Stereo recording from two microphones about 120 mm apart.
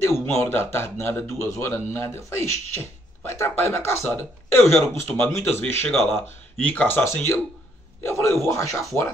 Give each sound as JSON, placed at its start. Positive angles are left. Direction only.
{"t": 0.0, "sound": "speech", "side_deg": 20}